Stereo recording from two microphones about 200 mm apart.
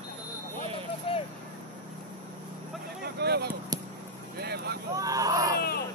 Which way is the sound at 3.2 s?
55° right (ahead or behind).